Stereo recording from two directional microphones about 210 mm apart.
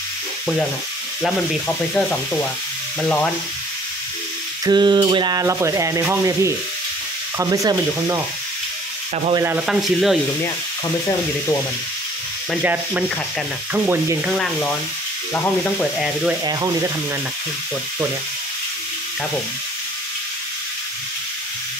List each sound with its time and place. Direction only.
1.2 s sizzle: 5° left (ahead or behind)
3.0 s frying: 5° left (ahead or behind)
4.6 s rub: 20° right (ahead or behind)
9.3 s sizzle: 10° right (ahead or behind)
13.7 s rub: 10° right (ahead or behind)
14.3 s sizzle: 5° left (ahead or behind)
16.4 s rub: 15° right (ahead or behind)